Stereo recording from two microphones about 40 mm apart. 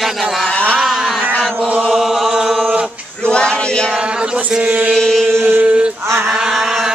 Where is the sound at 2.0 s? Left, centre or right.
Centre.